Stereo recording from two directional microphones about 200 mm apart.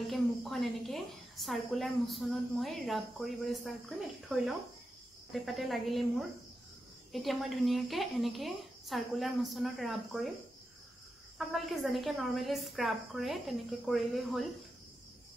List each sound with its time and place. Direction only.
0.1 s a woman's voice: centre (ahead or behind)
5.3 s a woman's voice: centre (ahead or behind)
11.3 s a woman's voice: centre (ahead or behind)